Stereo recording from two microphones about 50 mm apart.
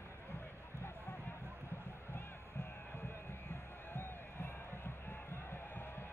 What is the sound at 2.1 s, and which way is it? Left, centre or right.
Music, left.